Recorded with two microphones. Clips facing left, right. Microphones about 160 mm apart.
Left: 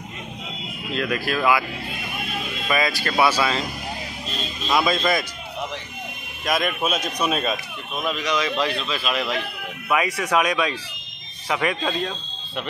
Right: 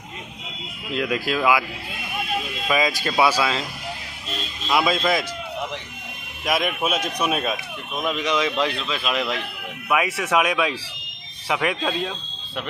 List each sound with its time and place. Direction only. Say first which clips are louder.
0.9 s a man's voice: right 1 dB; 15° right (ahead or behind)
2.7 s a man's voice: right 1 dB; 15° right (ahead or behind)
4.6 s speech: even; 5° right (ahead or behind)
6.4 s a man's voice: even; 5° right (ahead or behind)
7.9 s a man's voice: right 1 dB; 15° right (ahead or behind)
9.8 s a man's voice: even; 5° right (ahead or behind)